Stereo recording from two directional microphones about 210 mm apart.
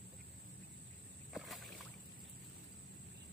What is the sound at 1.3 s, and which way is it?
Rowboat, centre (ahead or behind).